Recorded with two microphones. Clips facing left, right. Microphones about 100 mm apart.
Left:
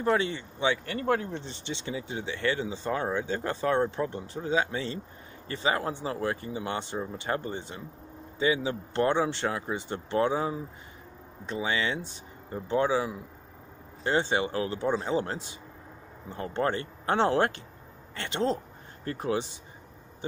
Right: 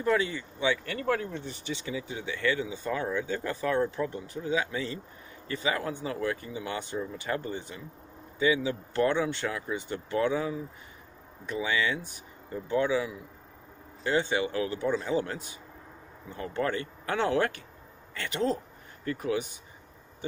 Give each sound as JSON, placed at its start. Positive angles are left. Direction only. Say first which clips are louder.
{"t": 0.0, "sound": "speech", "louder": "left 1 dB", "side_deg": 30}